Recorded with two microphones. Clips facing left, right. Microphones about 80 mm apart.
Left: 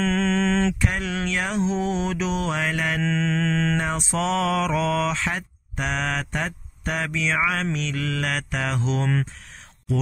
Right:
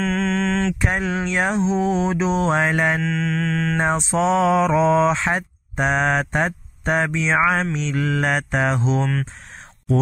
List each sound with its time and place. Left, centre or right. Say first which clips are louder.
0.0 s mantra: right 1 dB; centre
0.7 s mantra: right 4 dB; right
3.0 s mantra: right 1 dB; centre
3.8 s mantra: right 6 dB; right